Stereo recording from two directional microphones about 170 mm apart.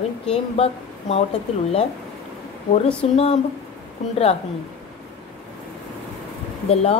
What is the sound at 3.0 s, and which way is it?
Speech, 35° left (ahead or behind).